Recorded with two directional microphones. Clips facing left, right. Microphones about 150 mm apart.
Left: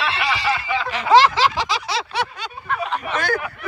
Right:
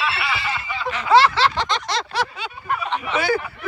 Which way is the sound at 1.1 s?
15° left (ahead or behind).